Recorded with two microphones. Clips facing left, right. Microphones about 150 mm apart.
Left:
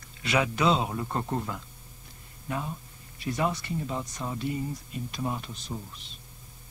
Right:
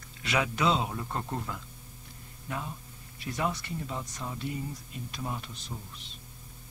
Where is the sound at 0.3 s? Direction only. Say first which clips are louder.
Left 3 dB; 15° left (ahead or behind).